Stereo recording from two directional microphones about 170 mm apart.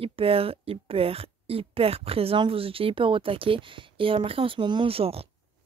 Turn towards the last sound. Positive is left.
turn(degrees=-35)  # may be behind; listen again after turning